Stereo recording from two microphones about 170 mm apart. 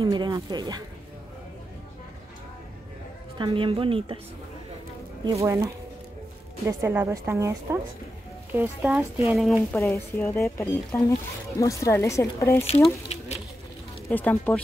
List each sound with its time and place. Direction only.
0.0 s speech: 25° right (ahead or behind)
3.3 s speech: 30° right (ahead or behind)
5.2 s a woman's voice: 15° right (ahead or behind)
9.4 s speech: centre (ahead or behind); by 12.6 s 15° left (ahead or behind)
14.0 s speech: 10° left (ahead or behind)